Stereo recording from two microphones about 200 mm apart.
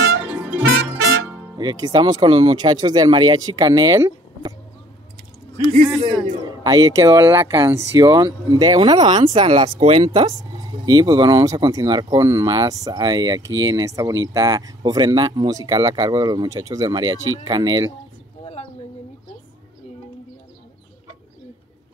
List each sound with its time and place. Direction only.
0.2 s music: 5° right (ahead or behind)
0.7 s music: 75° right (ahead or behind)
1.6 s speech: 20° right (ahead or behind)
6.0 s a man's voice: 20° right (ahead or behind)
18.4 s a sound: 30° left (ahead or behind)